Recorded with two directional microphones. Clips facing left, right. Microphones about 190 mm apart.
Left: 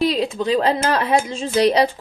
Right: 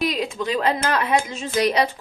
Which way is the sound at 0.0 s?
30° left (ahead or behind).